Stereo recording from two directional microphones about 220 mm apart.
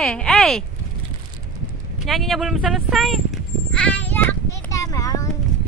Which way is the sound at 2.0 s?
Centre (ahead or behind).